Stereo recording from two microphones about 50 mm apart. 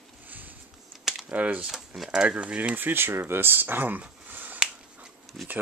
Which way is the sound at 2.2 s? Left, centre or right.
Right.